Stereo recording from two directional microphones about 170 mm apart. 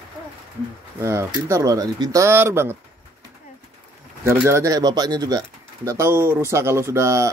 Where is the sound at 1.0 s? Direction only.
15° right (ahead or behind).